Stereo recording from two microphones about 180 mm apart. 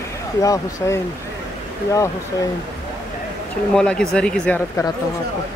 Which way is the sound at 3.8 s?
5° left (ahead or behind).